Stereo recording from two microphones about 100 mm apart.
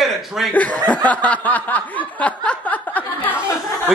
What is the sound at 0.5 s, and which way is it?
Snicker, 15° left (ahead or behind).